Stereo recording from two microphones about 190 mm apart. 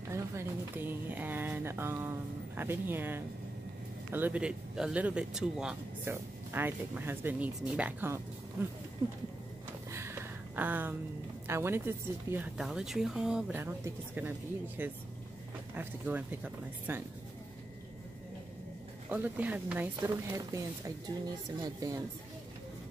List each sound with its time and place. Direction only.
0.1 s speech: 15° right (ahead or behind)
9.8 s a sound: 15° right (ahead or behind)
11.4 s speech: 15° right (ahead or behind)
19.0 s speech: 10° right (ahead or behind)